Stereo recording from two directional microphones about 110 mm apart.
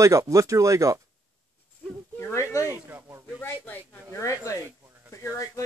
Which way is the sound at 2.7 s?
20° right (ahead or behind).